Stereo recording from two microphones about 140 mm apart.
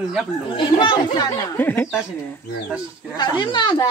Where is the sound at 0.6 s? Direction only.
35° left (ahead or behind).